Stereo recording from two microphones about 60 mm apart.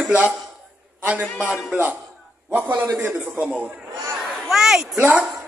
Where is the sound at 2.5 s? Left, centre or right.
Right.